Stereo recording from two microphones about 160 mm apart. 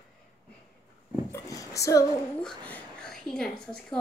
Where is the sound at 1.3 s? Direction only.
20° left (ahead or behind).